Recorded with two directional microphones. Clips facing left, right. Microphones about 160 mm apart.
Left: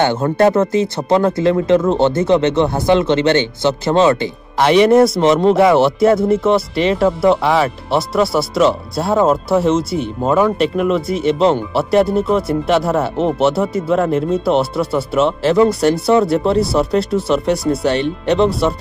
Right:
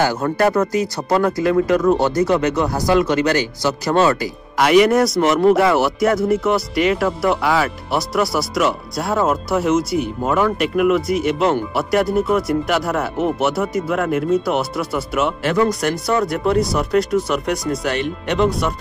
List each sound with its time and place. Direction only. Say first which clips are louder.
0.0 s speech: left 4 dB; 25° left (ahead or behind)